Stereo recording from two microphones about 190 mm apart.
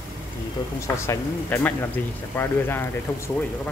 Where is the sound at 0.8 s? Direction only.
15° left (ahead or behind).